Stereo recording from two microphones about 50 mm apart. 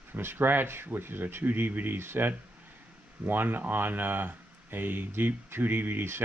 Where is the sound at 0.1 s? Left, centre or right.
Right.